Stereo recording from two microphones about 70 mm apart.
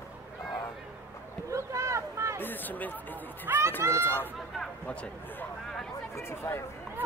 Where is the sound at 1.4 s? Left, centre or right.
Right.